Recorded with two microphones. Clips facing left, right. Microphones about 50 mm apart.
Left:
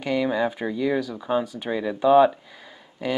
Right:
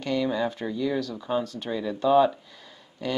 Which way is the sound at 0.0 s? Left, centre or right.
Centre.